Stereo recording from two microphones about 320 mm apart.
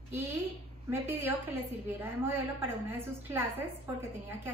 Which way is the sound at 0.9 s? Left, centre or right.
Centre.